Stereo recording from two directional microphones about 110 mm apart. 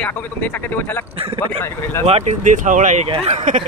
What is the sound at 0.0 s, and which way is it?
Speech, 15° left (ahead or behind).